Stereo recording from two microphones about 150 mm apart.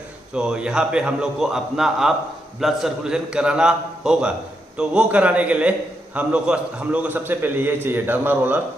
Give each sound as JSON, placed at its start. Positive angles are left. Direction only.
{"t": 0.3, "sound": "a man's voice", "side_deg": -5}